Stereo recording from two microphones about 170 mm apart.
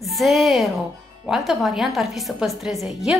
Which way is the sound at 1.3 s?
Centre (ahead or behind).